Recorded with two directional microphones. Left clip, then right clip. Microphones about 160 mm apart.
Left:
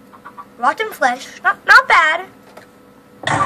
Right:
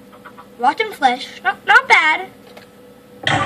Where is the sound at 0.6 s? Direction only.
35° left (ahead or behind).